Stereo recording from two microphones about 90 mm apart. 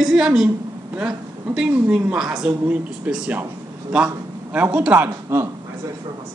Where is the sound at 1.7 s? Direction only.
15° right (ahead or behind).